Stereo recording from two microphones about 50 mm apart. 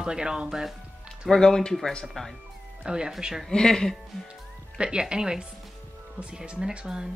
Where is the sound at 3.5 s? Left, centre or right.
Centre.